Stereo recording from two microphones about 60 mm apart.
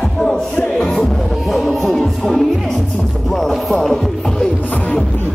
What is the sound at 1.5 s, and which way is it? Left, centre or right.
Music, centre.